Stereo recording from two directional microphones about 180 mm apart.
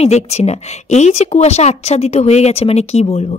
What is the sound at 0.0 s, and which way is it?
A woman's voice, 35° left (ahead or behind).